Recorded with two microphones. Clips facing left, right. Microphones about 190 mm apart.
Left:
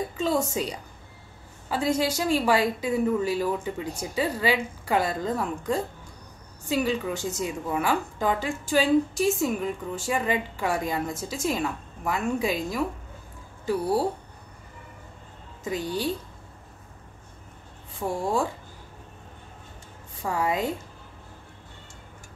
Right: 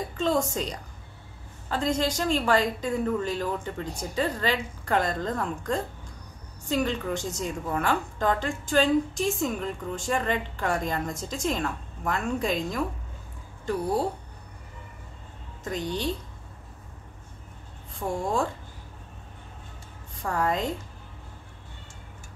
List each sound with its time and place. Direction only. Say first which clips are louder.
0.2 s a woman's voice: even; 5° left (ahead or behind)
15.6 s a woman's voice: left 2 dB; 5° left (ahead or behind)
18.0 s a woman's voice: left 1 dB; 5° left (ahead or behind)
20.2 s a woman's voice: left 1 dB; 5° left (ahead or behind)